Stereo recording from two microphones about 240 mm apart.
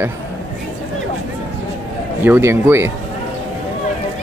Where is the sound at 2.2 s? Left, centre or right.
Centre.